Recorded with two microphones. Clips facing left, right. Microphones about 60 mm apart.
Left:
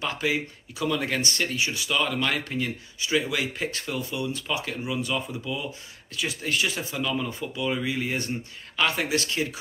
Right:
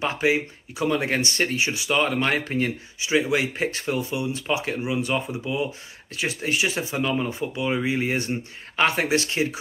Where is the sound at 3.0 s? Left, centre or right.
Right.